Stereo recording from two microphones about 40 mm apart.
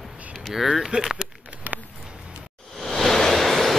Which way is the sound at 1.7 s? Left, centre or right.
Right.